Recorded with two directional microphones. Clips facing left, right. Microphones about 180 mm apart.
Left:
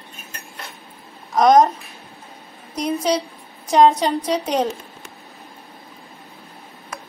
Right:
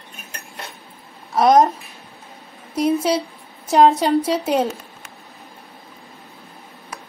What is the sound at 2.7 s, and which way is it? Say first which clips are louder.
A woman's voice: right 3 dB; 5° right (ahead or behind).